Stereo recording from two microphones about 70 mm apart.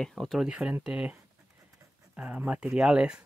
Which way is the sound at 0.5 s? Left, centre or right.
Centre.